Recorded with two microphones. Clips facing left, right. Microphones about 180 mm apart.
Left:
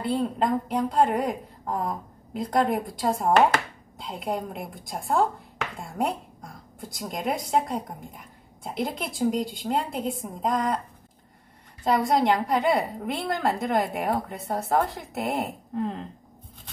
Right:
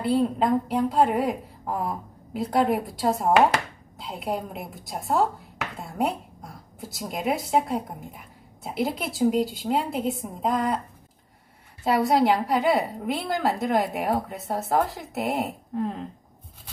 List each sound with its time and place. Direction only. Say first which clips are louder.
0.0 s speech: right 3 dB; centre (ahead or behind)
11.8 s speech: right 1 dB; 5° right (ahead or behind)